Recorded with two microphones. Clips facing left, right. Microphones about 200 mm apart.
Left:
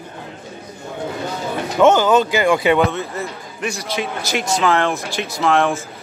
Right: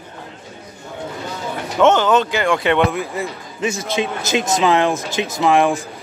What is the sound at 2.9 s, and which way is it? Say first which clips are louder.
Speech: right 2 dB; 15° right (ahead or behind).